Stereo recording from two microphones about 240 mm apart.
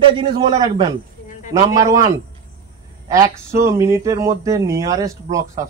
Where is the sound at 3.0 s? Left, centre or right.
Centre.